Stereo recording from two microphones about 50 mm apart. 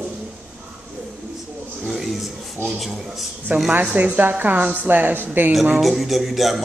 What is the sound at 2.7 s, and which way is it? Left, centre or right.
Speech, centre.